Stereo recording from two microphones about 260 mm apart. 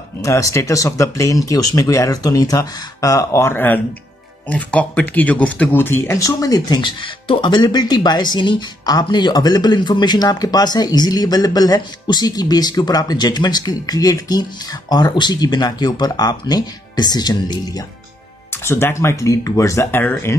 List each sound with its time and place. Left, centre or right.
0.2 s speech: centre